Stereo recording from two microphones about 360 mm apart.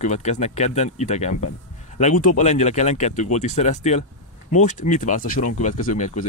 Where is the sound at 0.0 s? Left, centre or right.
Centre.